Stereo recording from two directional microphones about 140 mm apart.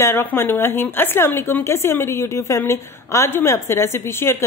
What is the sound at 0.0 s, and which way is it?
A woman's voice, 15° left (ahead or behind).